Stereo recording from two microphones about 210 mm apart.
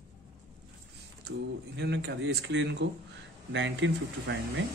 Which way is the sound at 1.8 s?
55° right (ahead or behind).